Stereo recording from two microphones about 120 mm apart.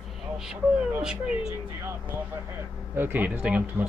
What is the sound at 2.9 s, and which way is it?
Speech, 15° right (ahead or behind).